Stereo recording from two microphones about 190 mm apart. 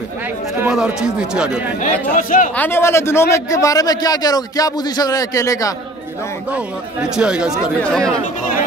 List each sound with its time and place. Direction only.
0.6 s speech: 5° right (ahead or behind)
1.8 s speech: 45° left (ahead or behind)
2.5 s a man's voice: 10° left (ahead or behind)
6.5 s speech: 5° right (ahead or behind)